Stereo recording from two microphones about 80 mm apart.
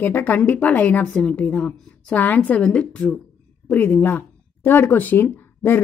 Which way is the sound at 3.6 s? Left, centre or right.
Left.